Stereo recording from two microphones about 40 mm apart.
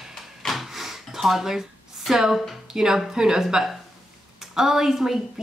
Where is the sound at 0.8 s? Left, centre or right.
Centre.